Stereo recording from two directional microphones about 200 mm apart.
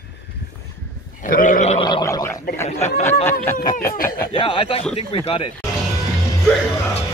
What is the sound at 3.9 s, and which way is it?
Speech, 45° left (ahead or behind).